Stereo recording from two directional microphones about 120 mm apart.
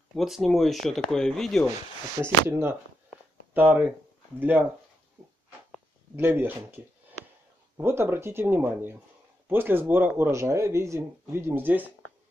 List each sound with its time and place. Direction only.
0.1 s speech: centre (ahead or behind)
2.2 s speech: 20° right (ahead or behind)
6.1 s speech: 20° right (ahead or behind)